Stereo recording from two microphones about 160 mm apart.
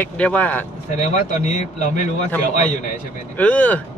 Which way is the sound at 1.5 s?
50° left (ahead or behind).